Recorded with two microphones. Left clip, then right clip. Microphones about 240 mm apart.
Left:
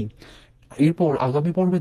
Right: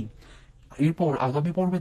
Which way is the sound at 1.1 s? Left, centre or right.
Left.